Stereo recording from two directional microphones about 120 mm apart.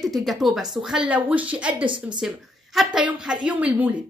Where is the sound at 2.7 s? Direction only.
5° right (ahead or behind).